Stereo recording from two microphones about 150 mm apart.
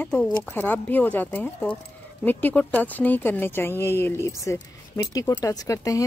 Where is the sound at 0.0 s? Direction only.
10° left (ahead or behind).